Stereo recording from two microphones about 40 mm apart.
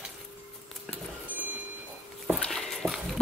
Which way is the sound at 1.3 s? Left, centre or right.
Right.